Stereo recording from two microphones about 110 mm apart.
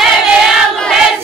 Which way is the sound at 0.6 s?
5° left (ahead or behind).